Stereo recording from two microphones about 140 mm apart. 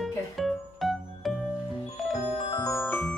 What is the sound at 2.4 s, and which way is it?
Music, 35° left (ahead or behind).